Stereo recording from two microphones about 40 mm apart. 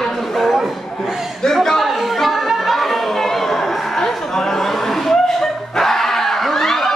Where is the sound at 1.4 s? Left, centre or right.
Centre.